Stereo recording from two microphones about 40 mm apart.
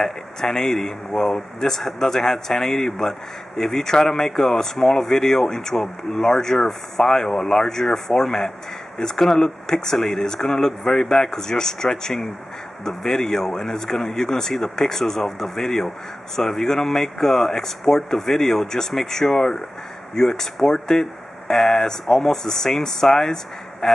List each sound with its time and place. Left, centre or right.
0.0 s speech: centre